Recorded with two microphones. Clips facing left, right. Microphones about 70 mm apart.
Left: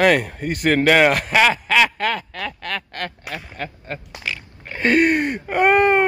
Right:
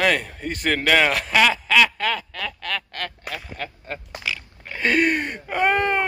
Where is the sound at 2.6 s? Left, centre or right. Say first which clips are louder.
Even; centre.